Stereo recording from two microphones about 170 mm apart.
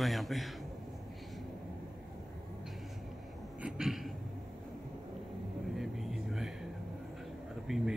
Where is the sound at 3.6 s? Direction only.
5° right (ahead or behind).